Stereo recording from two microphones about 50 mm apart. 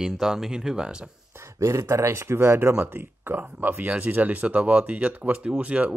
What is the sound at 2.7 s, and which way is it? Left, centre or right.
Speech, right.